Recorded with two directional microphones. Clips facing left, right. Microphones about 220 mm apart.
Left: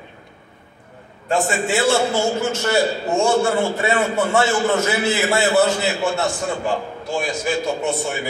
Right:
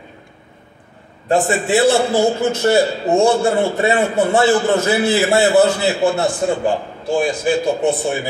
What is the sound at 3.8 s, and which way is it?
A man's voice, 35° right (ahead or behind).